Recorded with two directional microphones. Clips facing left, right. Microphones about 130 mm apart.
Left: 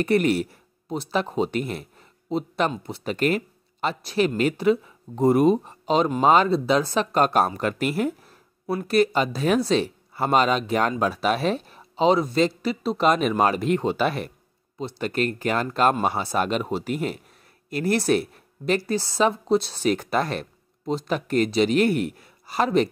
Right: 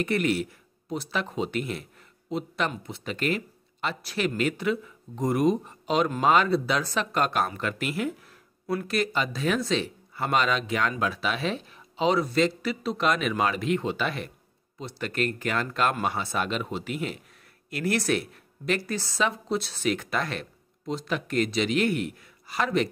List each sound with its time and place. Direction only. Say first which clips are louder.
0.0 s speech: left 5 dB; 40° left (ahead or behind)
4.0 s speech: left 5 dB; 25° left (ahead or behind)